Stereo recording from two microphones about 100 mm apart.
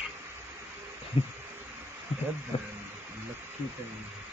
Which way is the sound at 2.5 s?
75° left (ahead or behind).